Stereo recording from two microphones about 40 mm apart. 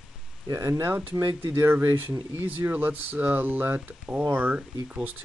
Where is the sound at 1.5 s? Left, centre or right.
Right.